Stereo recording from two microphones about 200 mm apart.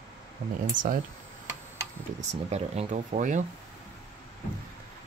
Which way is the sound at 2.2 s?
35° right (ahead or behind).